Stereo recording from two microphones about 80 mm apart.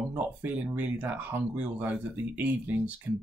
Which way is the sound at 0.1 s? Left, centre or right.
Right.